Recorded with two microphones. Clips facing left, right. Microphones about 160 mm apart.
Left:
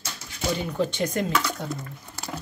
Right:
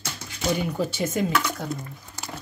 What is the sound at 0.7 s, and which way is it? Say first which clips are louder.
Speech: left 1 dB; 5° right (ahead or behind).